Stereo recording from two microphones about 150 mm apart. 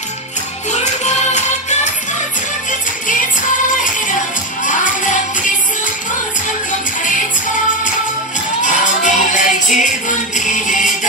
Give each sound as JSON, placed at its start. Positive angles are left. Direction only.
{"t": 0.7, "sound": "music", "side_deg": 50}
{"t": 4.6, "sound": "music", "side_deg": 60}
{"t": 8.6, "sound": "music", "side_deg": 60}